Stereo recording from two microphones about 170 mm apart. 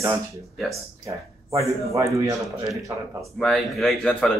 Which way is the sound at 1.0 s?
20° right (ahead or behind).